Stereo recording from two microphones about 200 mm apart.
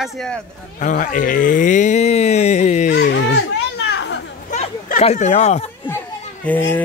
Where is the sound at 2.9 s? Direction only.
60° left (ahead or behind).